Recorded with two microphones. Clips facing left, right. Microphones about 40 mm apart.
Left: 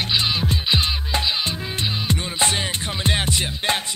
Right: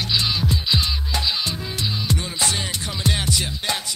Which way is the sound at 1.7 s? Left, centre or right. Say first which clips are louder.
Even; left.